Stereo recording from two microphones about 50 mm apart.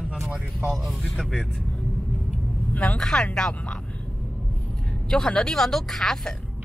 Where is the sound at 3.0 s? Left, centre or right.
Centre.